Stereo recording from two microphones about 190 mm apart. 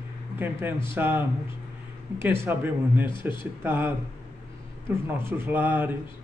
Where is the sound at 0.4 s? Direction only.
10° right (ahead or behind).